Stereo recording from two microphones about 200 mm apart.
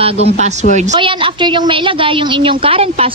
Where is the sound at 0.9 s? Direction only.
25° right (ahead or behind).